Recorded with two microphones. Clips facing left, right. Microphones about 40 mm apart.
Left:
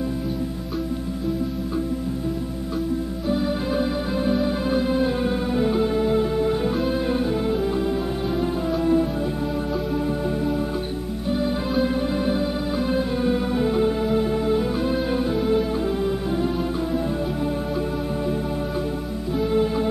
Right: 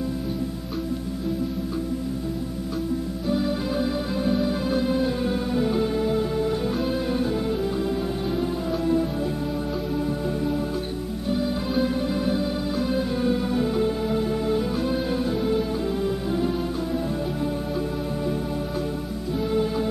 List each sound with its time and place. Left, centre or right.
3.3 s music: centre
10.0 s music: centre
19.3 s music: centre